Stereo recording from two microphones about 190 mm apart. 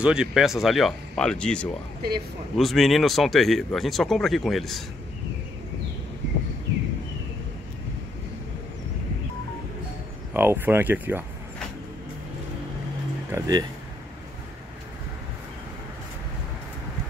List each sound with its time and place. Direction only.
0.0 s speech: 5° right (ahead or behind)
2.0 s speech: 55° right (ahead or behind)
2.5 s speech: centre (ahead or behind)
10.3 s speech: 10° right (ahead or behind)
13.3 s speech: 20° right (ahead or behind)